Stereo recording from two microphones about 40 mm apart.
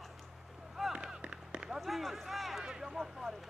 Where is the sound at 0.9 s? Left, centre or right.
Right.